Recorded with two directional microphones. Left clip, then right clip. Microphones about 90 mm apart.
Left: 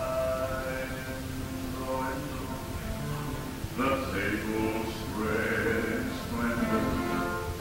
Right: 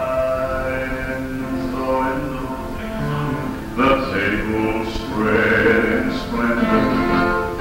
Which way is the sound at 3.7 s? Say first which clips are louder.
Right 12 dB; 35° right (ahead or behind).